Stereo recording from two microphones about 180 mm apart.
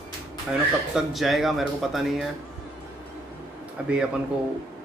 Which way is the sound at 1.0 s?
Centre (ahead or behind).